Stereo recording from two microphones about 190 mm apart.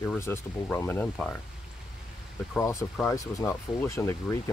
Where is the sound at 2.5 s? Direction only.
15° left (ahead or behind).